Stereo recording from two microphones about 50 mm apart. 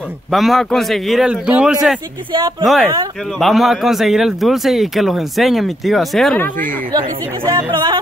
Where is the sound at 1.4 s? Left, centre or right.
Right.